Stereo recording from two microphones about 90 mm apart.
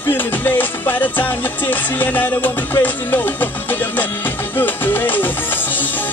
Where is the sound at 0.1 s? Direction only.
20° left (ahead or behind).